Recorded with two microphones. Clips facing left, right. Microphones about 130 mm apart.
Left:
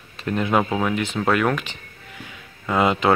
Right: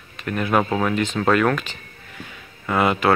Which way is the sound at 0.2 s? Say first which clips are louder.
Even; 25° left (ahead or behind).